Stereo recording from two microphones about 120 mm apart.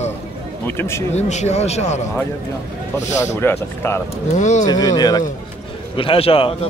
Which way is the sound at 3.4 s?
20° left (ahead or behind).